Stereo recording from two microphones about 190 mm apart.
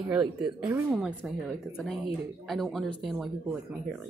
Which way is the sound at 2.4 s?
Centre (ahead or behind).